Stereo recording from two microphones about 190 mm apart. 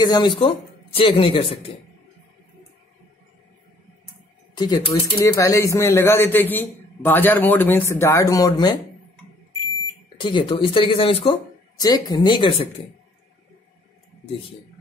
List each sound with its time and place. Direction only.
0.0 s speech: 25° left (ahead or behind)
4.6 s speech: 20° left (ahead or behind)
10.0 s speech: 25° left (ahead or behind)